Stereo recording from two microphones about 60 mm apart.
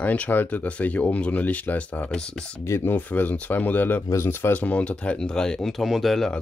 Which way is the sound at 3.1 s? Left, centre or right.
Left.